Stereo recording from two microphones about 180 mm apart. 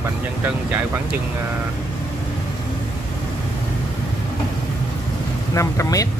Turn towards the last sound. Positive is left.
turn(degrees=15)  # may be behind; listen again after turning